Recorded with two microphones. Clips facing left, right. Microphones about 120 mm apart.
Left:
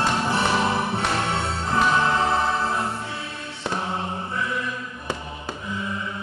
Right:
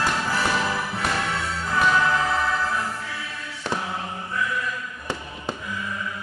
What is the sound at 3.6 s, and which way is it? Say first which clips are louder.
Mantra: left 1 dB; 25° left (ahead or behind).